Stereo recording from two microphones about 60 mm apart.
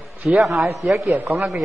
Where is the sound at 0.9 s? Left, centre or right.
Right.